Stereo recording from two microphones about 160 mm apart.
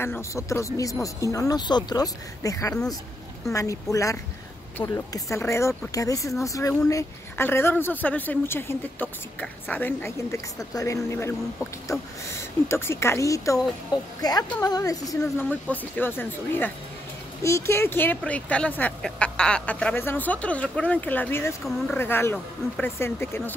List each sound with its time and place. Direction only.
0.0 s speech: 15° left (ahead or behind)
2.7 s speech: 5° left (ahead or behind)
3.5 s speech: 20° left (ahead or behind)
15.5 s speech: 10° left (ahead or behind)